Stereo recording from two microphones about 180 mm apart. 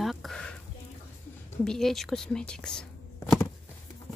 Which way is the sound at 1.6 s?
5° left (ahead or behind).